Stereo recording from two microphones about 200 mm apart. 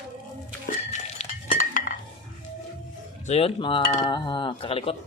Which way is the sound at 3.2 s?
30° left (ahead or behind).